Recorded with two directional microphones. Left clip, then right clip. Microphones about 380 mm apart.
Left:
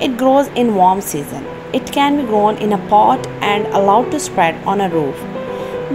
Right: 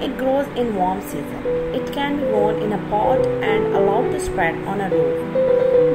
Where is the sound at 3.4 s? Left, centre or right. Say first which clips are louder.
Left 3 dB; left.